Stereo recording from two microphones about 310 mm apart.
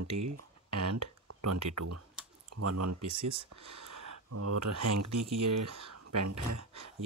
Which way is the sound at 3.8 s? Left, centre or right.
Right.